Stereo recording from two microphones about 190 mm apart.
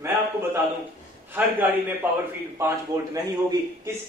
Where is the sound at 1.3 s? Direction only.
10° right (ahead or behind).